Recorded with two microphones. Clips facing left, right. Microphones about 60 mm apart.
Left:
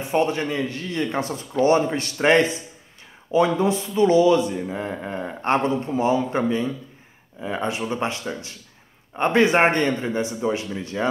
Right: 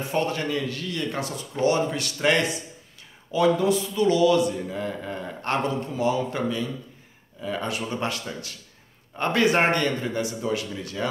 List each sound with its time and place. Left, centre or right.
0.0 s speech: left